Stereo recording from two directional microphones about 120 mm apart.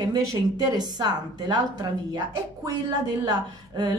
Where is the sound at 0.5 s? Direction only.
35° right (ahead or behind).